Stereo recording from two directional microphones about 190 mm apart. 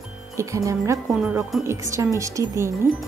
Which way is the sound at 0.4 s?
15° right (ahead or behind).